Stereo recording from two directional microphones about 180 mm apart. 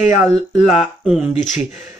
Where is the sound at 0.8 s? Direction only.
Centre (ahead or behind).